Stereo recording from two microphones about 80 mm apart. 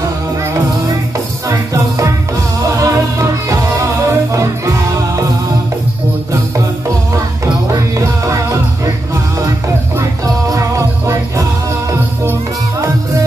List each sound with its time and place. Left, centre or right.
1.5 s music: right
8.3 s music: right
10.5 s music: right